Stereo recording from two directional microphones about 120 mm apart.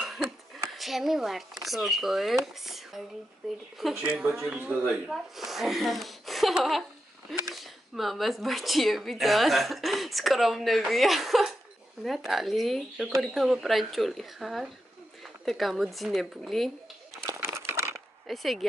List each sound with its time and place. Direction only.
0.0 s a sound: centre (ahead or behind)
0.7 s speech: centre (ahead or behind)
3.9 s speech: 15° right (ahead or behind); by 17.2 s centre (ahead or behind)
17.3 s crumpling: 25° right (ahead or behind)
18.2 s speech: centre (ahead or behind)